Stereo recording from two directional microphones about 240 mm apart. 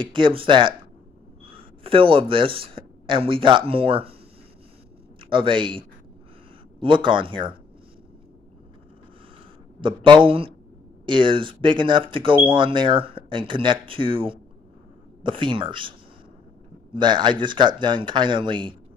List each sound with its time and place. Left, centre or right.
0.0 s speech: right
5.2 s speech: right
9.8 s speech: centre
16.9 s speech: centre